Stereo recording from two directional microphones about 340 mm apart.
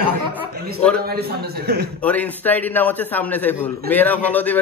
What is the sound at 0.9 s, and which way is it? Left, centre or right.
Speech, right.